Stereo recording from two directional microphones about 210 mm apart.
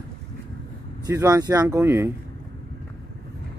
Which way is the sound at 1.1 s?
15° right (ahead or behind).